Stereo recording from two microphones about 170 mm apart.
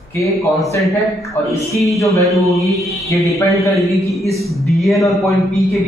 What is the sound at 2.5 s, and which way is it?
Speech, centre (ahead or behind).